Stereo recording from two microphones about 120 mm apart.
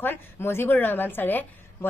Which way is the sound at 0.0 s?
20° left (ahead or behind).